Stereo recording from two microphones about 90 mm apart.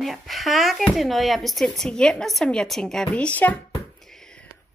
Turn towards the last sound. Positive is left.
turn(degrees=15)  # may be behind; listen again after turning